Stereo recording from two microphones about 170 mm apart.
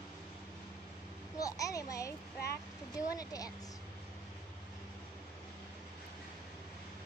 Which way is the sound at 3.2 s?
20° left (ahead or behind).